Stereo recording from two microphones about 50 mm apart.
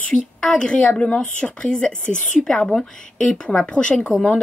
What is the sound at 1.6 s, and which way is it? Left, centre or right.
A woman's voice, centre.